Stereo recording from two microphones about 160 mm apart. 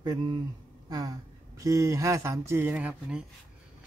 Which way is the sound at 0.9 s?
20° right (ahead or behind).